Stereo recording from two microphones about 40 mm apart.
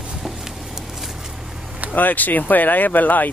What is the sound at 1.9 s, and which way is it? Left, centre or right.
Speech, left.